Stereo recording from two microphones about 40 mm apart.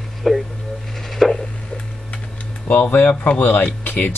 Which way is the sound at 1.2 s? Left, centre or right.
Centre.